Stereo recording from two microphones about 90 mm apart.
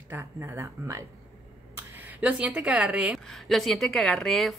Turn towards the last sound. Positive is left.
turn(degrees=5)  # may be behind; listen again after turning